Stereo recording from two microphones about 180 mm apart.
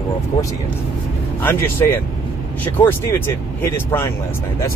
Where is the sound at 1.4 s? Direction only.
10° left (ahead or behind).